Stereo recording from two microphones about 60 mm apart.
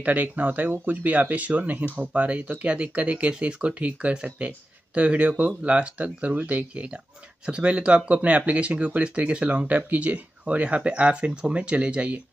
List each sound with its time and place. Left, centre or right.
0.0 s speech: right